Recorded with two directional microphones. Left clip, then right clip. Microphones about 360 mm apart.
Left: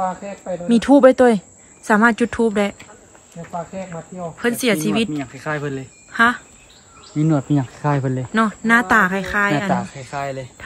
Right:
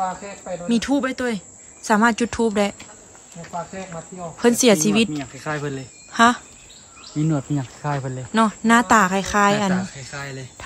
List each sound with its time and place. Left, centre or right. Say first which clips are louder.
0.7 s speech: left 11 dB; centre
4.4 s speech: right 3 dB; centre
7.2 s speech: left 5 dB; centre
7.8 s speech: left 3 dB; left
8.3 s speech: left 1 dB; centre
9.8 s speech: left 5 dB; centre